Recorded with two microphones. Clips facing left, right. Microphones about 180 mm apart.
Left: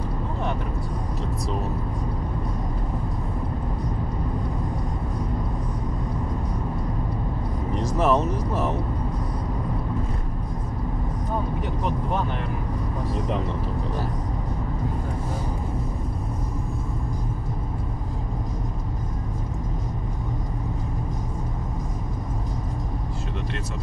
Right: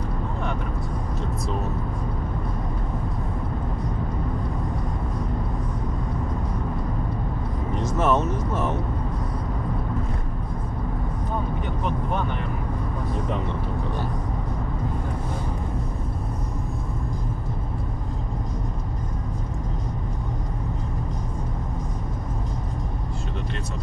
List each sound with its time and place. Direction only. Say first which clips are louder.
8.0 s vehicle: left 1 dB; centre (ahead or behind)
11.8 s vehicle: even; 35° left (ahead or behind)
13.1 s vehicle: left 1 dB; centre (ahead or behind)